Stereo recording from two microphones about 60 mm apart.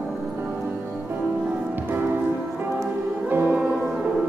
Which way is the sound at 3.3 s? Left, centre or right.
Right.